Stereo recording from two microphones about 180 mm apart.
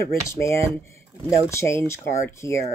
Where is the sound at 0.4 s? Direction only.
15° left (ahead or behind).